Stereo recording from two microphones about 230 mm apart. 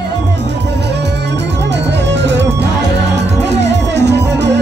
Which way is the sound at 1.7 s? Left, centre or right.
Right.